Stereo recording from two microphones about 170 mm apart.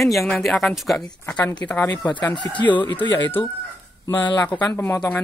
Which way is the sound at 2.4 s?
30° left (ahead or behind).